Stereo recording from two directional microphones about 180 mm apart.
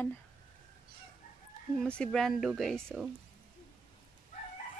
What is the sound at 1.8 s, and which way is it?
Speech, 5° left (ahead or behind).